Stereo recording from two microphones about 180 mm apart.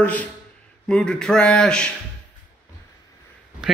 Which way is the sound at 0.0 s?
10° left (ahead or behind).